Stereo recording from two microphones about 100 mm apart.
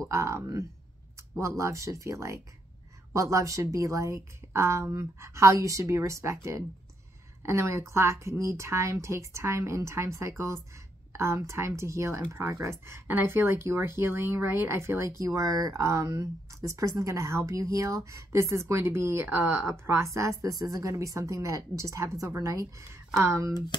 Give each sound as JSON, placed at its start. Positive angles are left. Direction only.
{"t": 0.1, "sound": "a woman's voice", "side_deg": -30}